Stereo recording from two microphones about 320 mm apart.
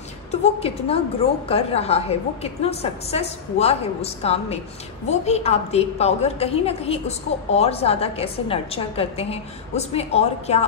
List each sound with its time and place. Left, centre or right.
0.3 s a woman's voice: centre